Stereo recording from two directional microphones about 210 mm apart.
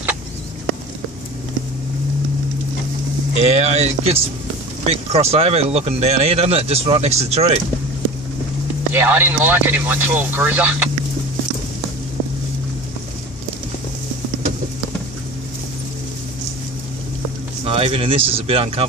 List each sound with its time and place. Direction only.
3.4 s speech: 30° right (ahead or behind)
8.9 s speech: 10° right (ahead or behind)
17.6 s speech: 25° right (ahead or behind)